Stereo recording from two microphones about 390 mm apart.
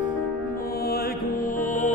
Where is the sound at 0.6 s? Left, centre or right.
Left.